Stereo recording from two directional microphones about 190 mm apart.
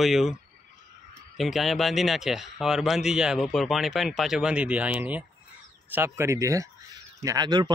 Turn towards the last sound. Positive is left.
turn(degrees=-20)  # may be behind; listen again after turning